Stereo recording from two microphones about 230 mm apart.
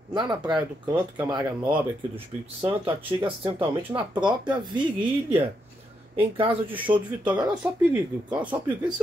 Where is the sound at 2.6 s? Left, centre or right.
Right.